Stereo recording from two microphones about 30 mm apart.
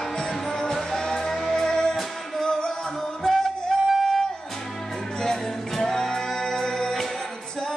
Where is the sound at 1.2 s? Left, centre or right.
Centre.